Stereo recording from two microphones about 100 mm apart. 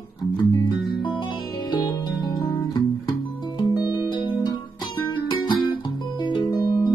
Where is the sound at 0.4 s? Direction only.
45° left (ahead or behind).